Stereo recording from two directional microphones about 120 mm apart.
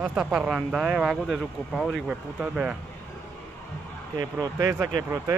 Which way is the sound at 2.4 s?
10° right (ahead or behind).